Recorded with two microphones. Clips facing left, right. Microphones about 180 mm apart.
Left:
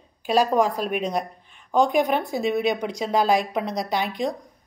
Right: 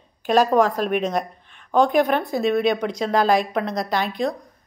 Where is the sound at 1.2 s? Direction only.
65° right (ahead or behind).